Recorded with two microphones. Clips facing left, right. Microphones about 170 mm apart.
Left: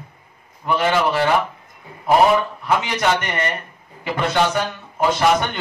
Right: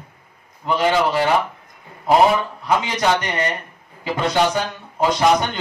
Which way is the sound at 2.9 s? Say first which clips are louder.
Right 1 dB; 15° right (ahead or behind).